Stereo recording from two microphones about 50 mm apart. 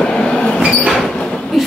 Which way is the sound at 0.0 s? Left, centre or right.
Centre.